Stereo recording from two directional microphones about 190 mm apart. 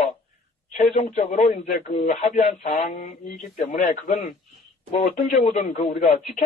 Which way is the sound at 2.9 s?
50° left (ahead or behind).